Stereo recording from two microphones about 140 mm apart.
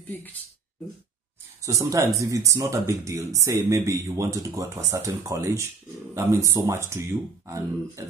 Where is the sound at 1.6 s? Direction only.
25° right (ahead or behind).